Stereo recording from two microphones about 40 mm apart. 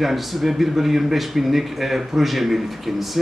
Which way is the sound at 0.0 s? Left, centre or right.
Centre.